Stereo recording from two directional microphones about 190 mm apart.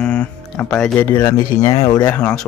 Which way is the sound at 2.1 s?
5° left (ahead or behind).